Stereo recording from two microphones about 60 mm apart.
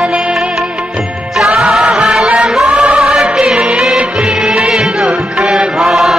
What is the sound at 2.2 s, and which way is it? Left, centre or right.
Chant, centre.